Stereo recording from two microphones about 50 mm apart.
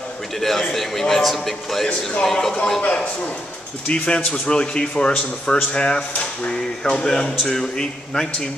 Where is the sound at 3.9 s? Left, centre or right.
Left.